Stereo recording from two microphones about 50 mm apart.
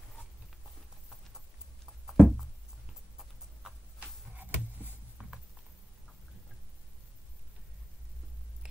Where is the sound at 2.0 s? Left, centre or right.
Centre.